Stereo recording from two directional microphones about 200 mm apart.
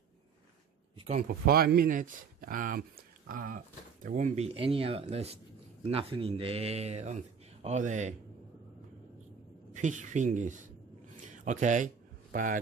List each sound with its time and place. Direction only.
0.9 s speech: 30° right (ahead or behind)
1.2 s speech: 50° right (ahead or behind)
9.8 s speech: 40° right (ahead or behind)
11.1 s a sound: 40° right (ahead or behind)